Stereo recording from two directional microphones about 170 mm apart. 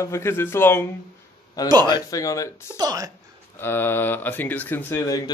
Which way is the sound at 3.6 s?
15° left (ahead or behind).